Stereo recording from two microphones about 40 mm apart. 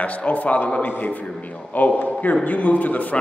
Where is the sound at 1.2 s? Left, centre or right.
Left.